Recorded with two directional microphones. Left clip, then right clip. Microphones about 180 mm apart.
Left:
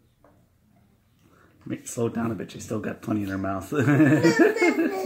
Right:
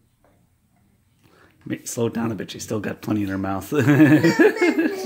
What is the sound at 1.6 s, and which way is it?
Speech, 45° right (ahead or behind).